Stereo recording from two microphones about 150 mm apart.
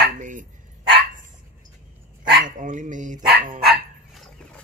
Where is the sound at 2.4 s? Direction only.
55° right (ahead or behind).